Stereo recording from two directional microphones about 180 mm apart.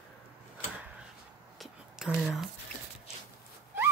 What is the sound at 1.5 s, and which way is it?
Whispering, centre (ahead or behind).